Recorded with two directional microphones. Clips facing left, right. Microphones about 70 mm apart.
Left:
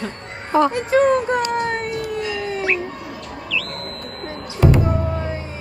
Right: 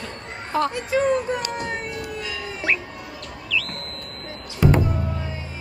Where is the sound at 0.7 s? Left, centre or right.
Left.